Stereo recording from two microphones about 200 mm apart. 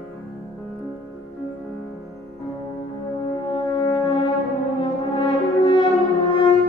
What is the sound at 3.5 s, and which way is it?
French horn, 25° left (ahead or behind).